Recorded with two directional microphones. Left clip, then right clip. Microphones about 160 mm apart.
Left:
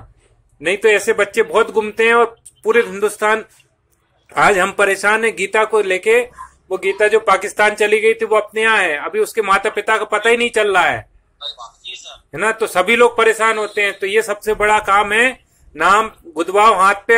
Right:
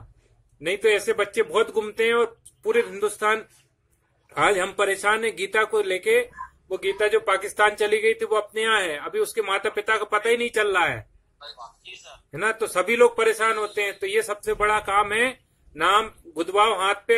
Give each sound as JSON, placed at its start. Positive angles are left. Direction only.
{"t": 0.7, "sound": "speech", "side_deg": -15}
{"t": 11.3, "sound": "a man's voice", "side_deg": 0}
{"t": 12.3, "sound": "speech", "side_deg": -15}